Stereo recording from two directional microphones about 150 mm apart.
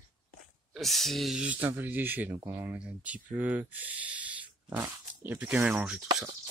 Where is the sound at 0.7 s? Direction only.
Centre (ahead or behind).